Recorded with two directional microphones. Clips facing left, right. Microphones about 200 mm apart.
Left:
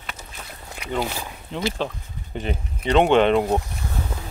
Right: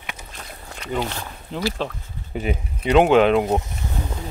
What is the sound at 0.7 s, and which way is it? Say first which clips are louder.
Speech: even; 10° left (ahead or behind).